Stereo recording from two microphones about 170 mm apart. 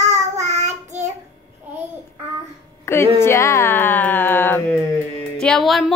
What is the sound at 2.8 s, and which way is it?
Speech, 15° left (ahead or behind).